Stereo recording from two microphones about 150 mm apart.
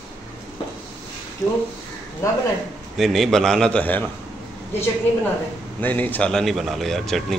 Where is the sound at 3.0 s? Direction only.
Centre (ahead or behind).